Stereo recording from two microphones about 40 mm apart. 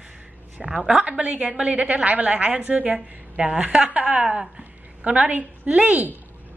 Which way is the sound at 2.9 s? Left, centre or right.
Centre.